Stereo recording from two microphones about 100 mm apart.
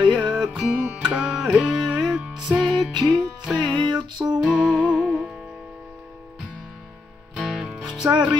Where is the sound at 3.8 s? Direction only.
50° right (ahead or behind).